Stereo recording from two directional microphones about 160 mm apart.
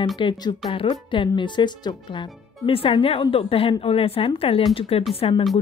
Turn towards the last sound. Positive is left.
turn(degrees=35)  # may be behind; listen again after turning